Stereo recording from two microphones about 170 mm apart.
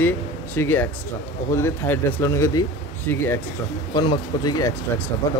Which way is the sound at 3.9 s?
25° left (ahead or behind).